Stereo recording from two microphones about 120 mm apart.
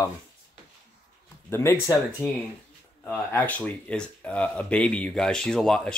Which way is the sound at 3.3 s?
15° left (ahead or behind).